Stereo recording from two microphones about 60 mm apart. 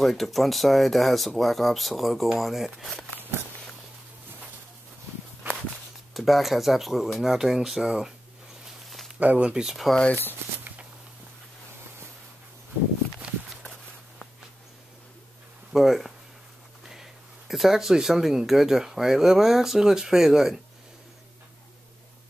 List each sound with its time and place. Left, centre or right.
0.0 s speech: centre
3.2 s walk: right
6.1 s speech: centre
8.6 s a sound: centre
9.2 s speech: right
9.5 s speech: centre
13.2 s walk: centre
15.7 s speech: centre